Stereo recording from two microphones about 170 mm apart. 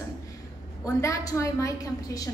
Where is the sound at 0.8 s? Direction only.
20° left (ahead or behind).